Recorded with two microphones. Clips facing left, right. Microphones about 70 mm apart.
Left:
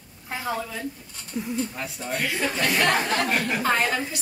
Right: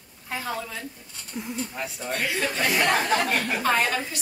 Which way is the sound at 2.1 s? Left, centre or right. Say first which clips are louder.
Left 1 dB; centre.